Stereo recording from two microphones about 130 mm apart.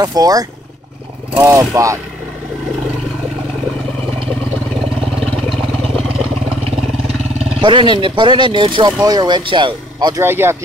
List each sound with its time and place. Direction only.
0.0 s speech: 30° right (ahead or behind)
5.2 s vehicle: 5° left (ahead or behind)
7.6 s speech: 35° right (ahead or behind)
10.2 s speech: 15° right (ahead or behind)